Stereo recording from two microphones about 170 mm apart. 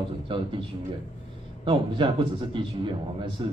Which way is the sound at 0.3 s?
30° right (ahead or behind).